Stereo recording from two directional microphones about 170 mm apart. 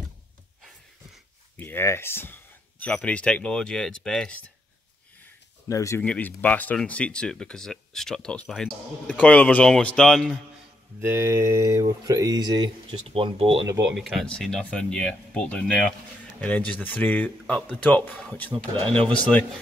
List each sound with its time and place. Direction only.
1.6 s speech: 15° left (ahead or behind)
5.7 s speech: 20° left (ahead or behind); by 10.4 s centre (ahead or behind)
11.0 s speech: 15° right (ahead or behind); by 13.7 s 30° right (ahead or behind)
13.8 s speech: centre (ahead or behind)